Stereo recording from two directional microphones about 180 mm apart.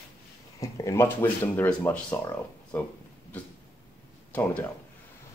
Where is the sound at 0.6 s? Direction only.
20° left (ahead or behind).